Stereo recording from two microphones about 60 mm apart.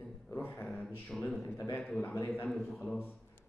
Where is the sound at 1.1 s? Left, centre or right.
Centre.